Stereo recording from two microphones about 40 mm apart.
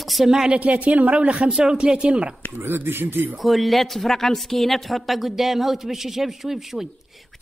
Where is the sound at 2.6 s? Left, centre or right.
Right.